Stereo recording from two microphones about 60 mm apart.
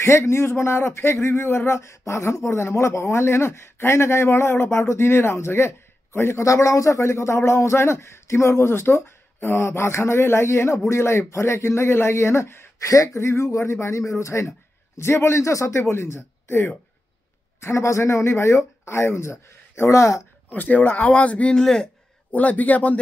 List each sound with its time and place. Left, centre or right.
0.0 s speech: left
6.4 s speech: left
12.8 s speech: left
20.4 s speech: left
21.5 s speech: centre
22.3 s speech: left